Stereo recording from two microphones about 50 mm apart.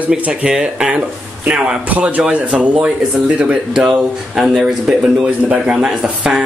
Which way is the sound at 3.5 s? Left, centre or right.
Centre.